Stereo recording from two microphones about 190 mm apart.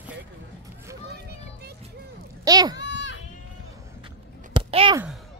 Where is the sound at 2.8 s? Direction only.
70° left (ahead or behind).